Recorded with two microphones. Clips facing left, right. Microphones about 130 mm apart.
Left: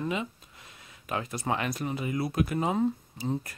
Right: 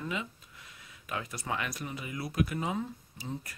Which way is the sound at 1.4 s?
30° left (ahead or behind).